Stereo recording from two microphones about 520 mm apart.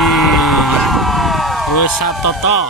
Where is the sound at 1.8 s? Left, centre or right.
Left.